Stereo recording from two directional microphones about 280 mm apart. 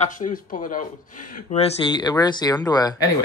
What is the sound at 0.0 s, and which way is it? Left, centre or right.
Speech, left.